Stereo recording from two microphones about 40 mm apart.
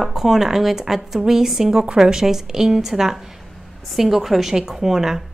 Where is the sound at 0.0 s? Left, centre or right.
Centre.